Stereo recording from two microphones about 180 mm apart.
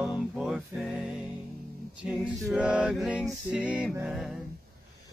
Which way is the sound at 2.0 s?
Centre (ahead or behind).